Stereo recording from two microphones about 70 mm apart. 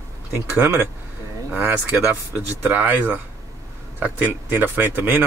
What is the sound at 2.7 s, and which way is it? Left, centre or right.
Speech, right.